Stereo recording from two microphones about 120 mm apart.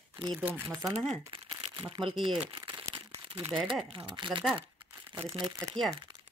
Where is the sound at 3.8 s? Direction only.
45° right (ahead or behind).